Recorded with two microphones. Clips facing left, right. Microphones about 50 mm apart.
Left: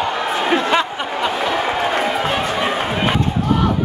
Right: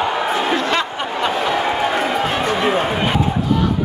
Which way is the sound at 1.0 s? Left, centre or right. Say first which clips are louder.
Right 1 dB; centre.